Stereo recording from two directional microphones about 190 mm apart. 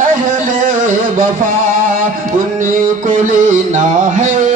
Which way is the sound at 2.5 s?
45° right (ahead or behind).